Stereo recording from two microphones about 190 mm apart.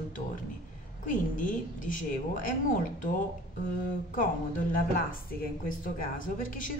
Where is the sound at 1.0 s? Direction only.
45° left (ahead or behind).